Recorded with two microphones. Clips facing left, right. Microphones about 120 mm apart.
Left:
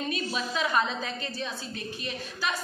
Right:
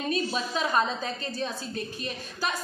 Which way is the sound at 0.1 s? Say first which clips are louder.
Right 3 dB; 35° right (ahead or behind).